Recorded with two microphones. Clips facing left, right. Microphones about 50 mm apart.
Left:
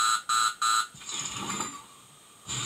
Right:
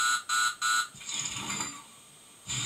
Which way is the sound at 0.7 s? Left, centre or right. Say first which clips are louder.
Left 2 dB; left.